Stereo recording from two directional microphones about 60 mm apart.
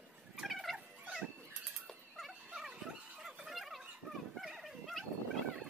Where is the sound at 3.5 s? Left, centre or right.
Centre.